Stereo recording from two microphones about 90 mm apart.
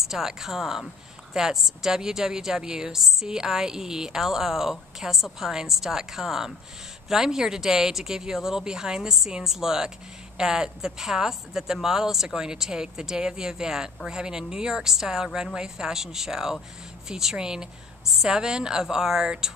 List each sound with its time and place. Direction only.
0.0 s a woman's voice: 5° right (ahead or behind)